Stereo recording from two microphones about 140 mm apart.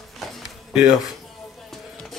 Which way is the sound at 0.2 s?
Centre (ahead or behind).